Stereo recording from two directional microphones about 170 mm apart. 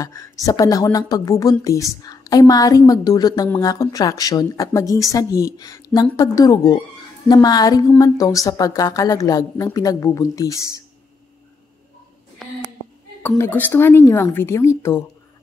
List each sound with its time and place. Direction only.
0.0 s speech: 20° left (ahead or behind)
13.4 s a woman's voice: 10° left (ahead or behind)